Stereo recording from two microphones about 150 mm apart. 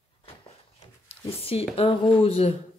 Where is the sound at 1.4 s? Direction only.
40° left (ahead or behind).